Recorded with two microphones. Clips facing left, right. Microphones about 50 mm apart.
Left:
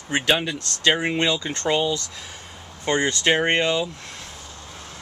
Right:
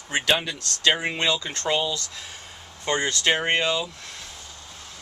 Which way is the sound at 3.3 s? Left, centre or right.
Centre.